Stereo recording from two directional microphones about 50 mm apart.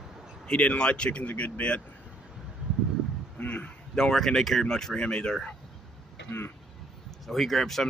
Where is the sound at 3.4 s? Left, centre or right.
Left.